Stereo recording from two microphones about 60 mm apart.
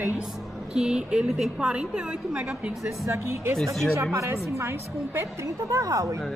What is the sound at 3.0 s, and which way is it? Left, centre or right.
Speech, right.